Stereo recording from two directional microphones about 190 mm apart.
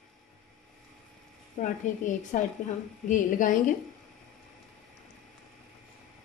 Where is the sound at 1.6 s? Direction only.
45° left (ahead or behind).